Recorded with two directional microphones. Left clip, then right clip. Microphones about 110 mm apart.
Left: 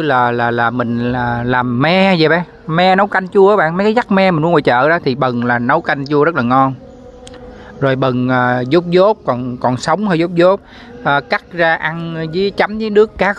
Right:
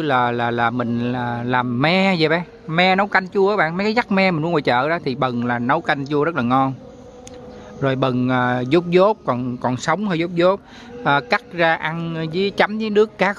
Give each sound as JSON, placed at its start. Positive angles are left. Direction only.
{"t": 0.0, "sound": "speech", "side_deg": 25}
{"t": 2.7, "sound": "speech", "side_deg": 50}
{"t": 7.8, "sound": "speech", "side_deg": 25}
{"t": 9.6, "sound": "speech", "side_deg": 30}
{"t": 11.1, "sound": "speech", "side_deg": 0}